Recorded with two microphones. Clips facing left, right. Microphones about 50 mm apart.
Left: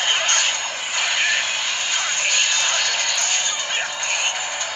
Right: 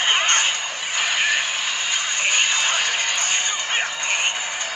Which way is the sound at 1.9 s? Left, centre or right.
Right.